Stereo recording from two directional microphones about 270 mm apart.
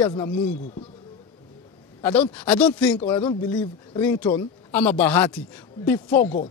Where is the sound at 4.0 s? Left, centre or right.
Centre; by 6.5 s left.